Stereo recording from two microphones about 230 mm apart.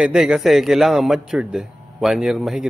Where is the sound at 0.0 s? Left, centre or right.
Centre.